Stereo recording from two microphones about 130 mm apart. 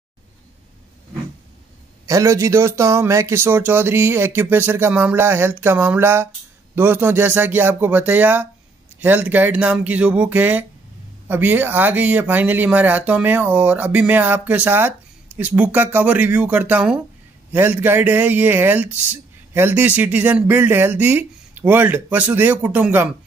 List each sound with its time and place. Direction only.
2.0 s speech: 25° right (ahead or behind)